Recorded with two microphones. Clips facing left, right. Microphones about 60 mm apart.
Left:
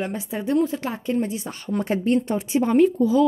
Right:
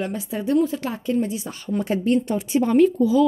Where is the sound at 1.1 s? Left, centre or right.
Left.